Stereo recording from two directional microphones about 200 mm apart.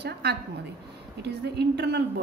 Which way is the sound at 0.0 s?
55° right (ahead or behind).